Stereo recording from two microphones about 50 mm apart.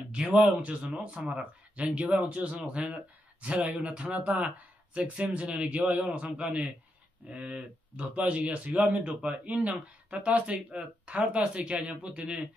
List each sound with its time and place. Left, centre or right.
0.3 s speech: right